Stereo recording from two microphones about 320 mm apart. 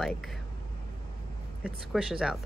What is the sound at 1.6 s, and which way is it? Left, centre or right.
Speech, centre.